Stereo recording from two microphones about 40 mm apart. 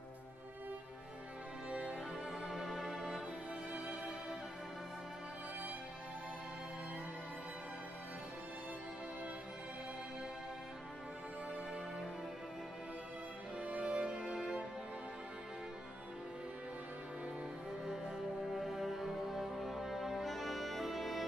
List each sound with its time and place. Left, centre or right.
1.7 s music: right
2.5 s music: centre
13.6 s music: right
14.1 s music: centre
17.8 s music: centre